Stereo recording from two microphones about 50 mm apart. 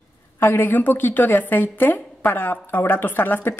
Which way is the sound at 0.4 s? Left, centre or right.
Left.